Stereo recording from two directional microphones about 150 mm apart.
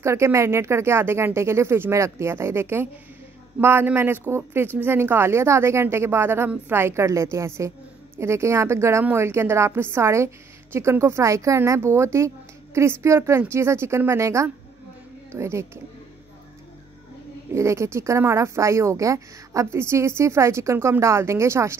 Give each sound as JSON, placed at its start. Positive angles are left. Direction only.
{"t": 0.0, "sound": "speech", "side_deg": -20}
{"t": 17.5, "sound": "speech", "side_deg": -20}